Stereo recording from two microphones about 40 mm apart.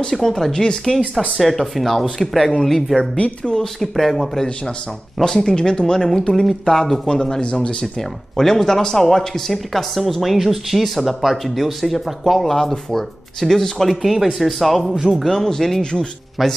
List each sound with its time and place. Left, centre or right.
0.1 s speech: centre
1.4 s speech: centre
3.0 s a woman's voice: left
3.9 s speech: centre
5.2 s speech: centre
15.8 s a woman's voice: left